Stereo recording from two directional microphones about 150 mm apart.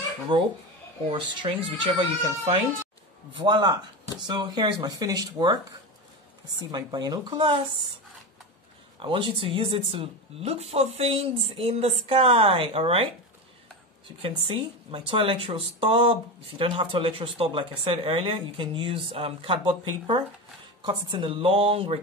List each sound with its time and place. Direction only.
0.3 s speech: 30° right (ahead or behind)
3.3 s speech: 30° right (ahead or behind)
6.7 s speech: 30° right (ahead or behind)
9.0 s speech: 35° right (ahead or behind)
14.2 s speech: 35° right (ahead or behind)